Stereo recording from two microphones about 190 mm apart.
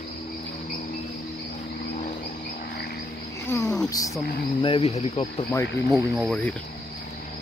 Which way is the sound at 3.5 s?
15° left (ahead or behind).